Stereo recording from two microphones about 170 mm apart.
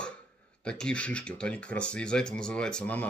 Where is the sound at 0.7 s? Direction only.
5° left (ahead or behind).